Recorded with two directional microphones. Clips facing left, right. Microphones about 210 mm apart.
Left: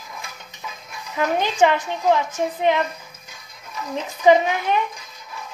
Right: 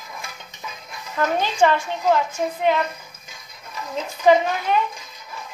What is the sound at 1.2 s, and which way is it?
A woman's voice, 15° left (ahead or behind).